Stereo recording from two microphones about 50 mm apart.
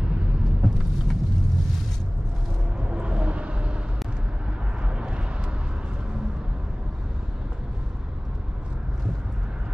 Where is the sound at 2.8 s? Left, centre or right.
Centre.